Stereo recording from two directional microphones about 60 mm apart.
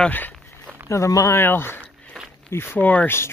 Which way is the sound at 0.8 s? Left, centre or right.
Left.